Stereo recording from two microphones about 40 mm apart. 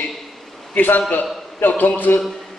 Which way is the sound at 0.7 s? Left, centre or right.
Left.